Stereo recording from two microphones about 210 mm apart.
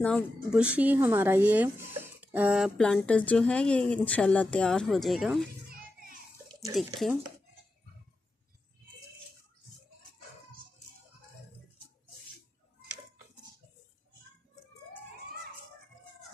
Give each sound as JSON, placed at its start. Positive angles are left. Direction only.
{"t": 0.0, "sound": "speech", "side_deg": 0}
{"t": 5.7, "sound": "children playing", "side_deg": -45}
{"t": 6.7, "sound": "speech", "side_deg": 0}